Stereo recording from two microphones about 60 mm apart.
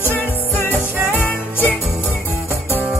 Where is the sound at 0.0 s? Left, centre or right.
Left.